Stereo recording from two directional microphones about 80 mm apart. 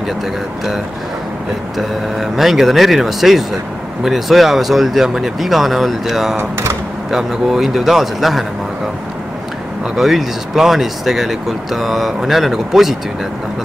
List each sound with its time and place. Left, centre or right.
1.8 s speech: centre
6.3 s speech: right
7.1 s speech: centre
9.9 s speech: centre